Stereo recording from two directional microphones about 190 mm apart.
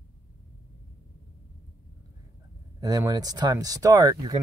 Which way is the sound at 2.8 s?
20° right (ahead or behind).